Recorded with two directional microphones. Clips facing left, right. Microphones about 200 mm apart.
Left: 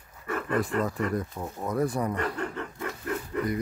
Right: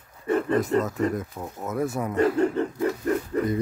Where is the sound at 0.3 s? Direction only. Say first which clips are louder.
Right 6 dB; 30° right (ahead or behind).